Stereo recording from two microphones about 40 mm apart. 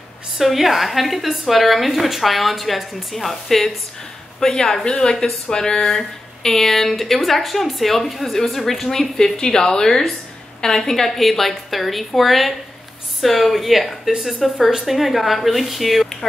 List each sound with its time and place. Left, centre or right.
0.4 s a woman's voice: centre
11.1 s a woman's voice: centre